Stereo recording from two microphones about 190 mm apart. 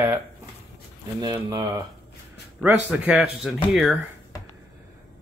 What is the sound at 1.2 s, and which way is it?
Speech, 20° right (ahead or behind).